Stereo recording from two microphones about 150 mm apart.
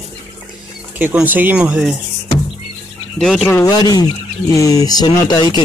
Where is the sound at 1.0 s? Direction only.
10° right (ahead or behind).